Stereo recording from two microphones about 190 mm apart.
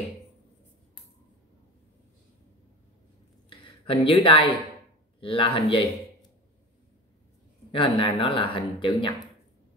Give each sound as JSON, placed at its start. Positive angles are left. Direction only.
{"t": 3.4, "sound": "speech", "side_deg": 25}
{"t": 7.7, "sound": "speech", "side_deg": 25}